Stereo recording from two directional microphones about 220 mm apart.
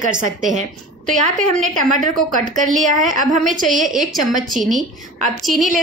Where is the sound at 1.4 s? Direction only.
35° right (ahead or behind).